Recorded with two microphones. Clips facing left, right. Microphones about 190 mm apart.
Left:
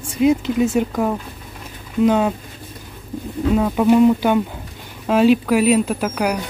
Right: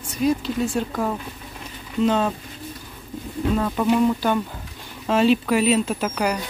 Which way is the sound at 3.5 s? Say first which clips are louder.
Left 6 dB; 10° left (ahead or behind).